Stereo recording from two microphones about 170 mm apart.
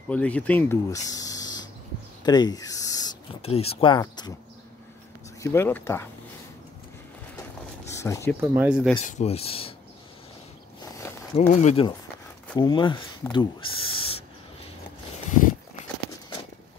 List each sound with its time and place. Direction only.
0.1 s speech: 10° left (ahead or behind)
2.2 s a sound: 25° left (ahead or behind)
3.4 s speech: 35° left (ahead or behind)
5.4 s speech: 15° left (ahead or behind)
8.0 s speech: 15° left (ahead or behind)
8.4 s speech: 10° right (ahead or behind)
9.0 s speech: 40° left (ahead or behind)
11.3 s speech: 40° left (ahead or behind)
12.5 s speech: 25° left (ahead or behind)